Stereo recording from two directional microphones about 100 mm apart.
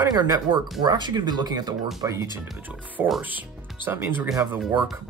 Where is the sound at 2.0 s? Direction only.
30° right (ahead or behind).